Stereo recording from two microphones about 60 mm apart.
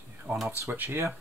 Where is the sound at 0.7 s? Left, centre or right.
Right.